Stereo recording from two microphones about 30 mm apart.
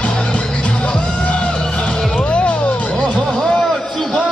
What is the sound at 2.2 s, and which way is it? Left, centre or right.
Music, left.